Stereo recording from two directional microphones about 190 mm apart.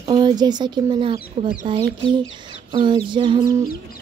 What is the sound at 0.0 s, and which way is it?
Speech, 25° right (ahead or behind).